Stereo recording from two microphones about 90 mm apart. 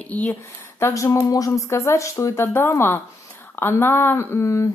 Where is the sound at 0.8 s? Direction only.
35° left (ahead or behind).